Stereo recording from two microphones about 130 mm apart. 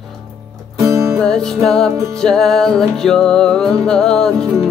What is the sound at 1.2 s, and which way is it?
Music, 5° left (ahead or behind).